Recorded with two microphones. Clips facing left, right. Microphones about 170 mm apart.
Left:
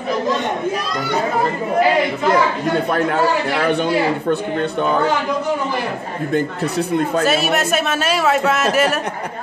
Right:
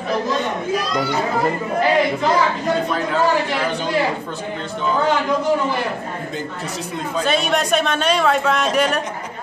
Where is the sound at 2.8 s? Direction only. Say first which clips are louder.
Left 2 dB; 60° left (ahead or behind).